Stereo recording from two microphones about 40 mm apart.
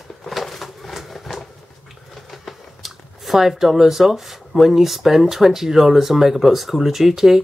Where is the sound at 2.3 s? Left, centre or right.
Centre.